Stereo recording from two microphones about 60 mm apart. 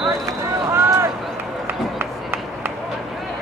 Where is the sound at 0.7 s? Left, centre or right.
Right.